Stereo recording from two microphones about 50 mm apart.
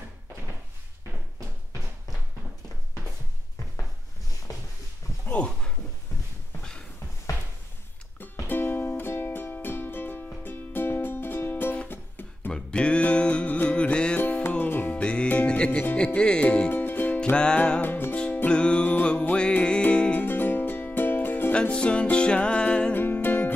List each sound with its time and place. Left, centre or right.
8.2 s music: left
12.5 s music: left
14.1 s music: left
15.0 s music: left
16.7 s music: left
18.1 s music: left
19.3 s music: left
20.2 s music: left
21.5 s music: left
22.9 s music: left